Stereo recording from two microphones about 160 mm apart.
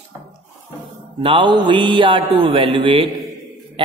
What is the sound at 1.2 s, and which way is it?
A man's voice, 30° right (ahead or behind).